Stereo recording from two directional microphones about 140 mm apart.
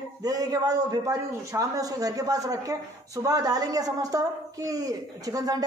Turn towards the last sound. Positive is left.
turn(degrees=-25)  # may be behind; listen again after turning